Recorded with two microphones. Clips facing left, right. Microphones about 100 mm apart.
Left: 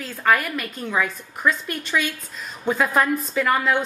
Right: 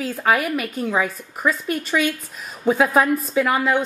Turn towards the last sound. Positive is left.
turn(degrees=-5)  # may be behind; listen again after turning